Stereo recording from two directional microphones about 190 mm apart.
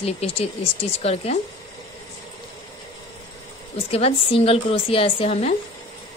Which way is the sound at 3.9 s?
30° left (ahead or behind).